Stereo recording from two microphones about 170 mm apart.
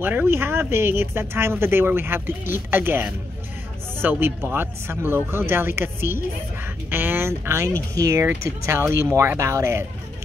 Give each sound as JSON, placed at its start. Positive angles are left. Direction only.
{"t": 0.0, "sound": "a woman's voice", "side_deg": -10}